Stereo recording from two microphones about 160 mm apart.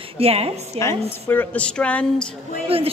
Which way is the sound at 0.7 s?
20° left (ahead or behind).